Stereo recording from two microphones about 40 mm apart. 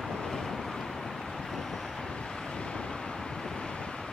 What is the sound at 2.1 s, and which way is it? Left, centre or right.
Vehicle, left.